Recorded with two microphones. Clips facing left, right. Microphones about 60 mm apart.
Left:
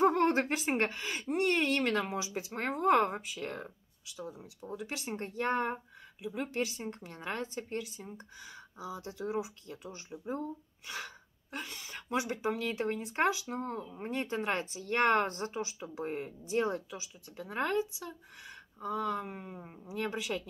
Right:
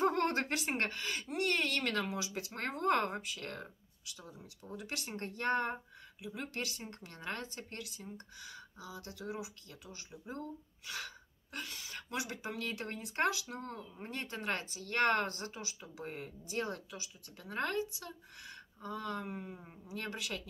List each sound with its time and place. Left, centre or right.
0.0 s speech: centre
4.7 s speech: centre
8.0 s speech: left
9.2 s speech: left
10.4 s a sound: centre
11.7 s a woman's voice: left
12.4 s speech: centre